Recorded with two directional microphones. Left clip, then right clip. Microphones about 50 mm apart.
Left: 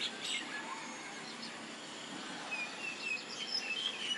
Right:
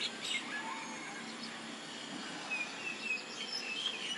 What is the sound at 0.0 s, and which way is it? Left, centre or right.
Bird, centre.